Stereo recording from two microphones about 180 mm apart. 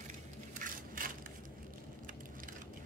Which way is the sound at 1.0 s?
50° right (ahead or behind).